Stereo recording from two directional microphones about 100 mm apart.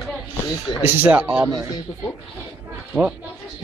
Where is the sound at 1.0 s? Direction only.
20° right (ahead or behind).